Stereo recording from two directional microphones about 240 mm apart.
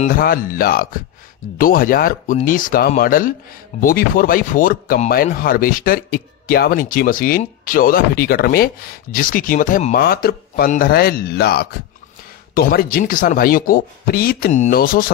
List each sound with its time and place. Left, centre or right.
0.0 s speech: left